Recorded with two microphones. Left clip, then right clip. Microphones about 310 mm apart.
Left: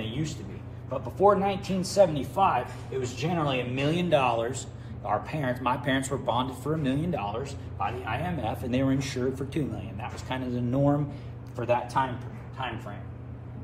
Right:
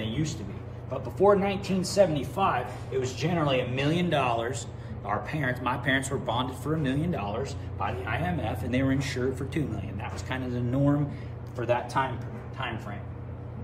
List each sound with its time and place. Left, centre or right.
1.2 s speech: centre